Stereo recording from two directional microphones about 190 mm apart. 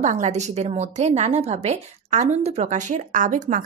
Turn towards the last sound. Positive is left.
turn(degrees=-40)  # may be behind; listen again after turning